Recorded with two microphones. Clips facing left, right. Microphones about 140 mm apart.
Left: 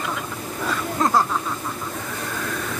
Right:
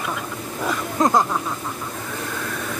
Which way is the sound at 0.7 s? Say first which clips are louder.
Right 2 dB; 20° right (ahead or behind).